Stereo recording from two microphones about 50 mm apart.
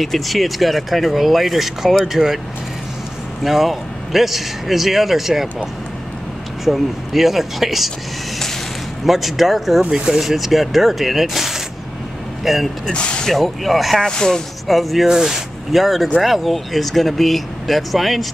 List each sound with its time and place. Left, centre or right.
0.0 s speech: centre
3.4 s speech: centre
6.6 s speech: centre
9.0 s speech: centre
9.8 s speech: centre
10.2 s speech: centre
12.8 s speech: centre
13.3 s speech: centre
14.0 s speech: centre
14.7 s speech: centre
15.0 s speech: centre